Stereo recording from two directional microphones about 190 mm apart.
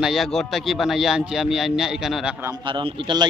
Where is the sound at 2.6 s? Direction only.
25° right (ahead or behind).